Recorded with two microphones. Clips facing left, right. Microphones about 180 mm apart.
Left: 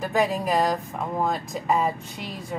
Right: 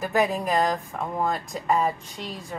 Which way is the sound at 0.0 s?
Centre (ahead or behind).